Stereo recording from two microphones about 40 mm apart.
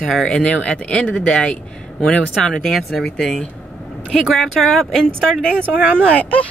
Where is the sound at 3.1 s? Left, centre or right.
Centre.